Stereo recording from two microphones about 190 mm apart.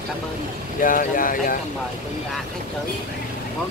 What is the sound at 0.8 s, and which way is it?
Speech, 45° left (ahead or behind).